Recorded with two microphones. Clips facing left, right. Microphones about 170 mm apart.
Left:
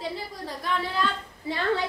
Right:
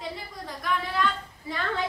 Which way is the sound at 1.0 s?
30° left (ahead or behind).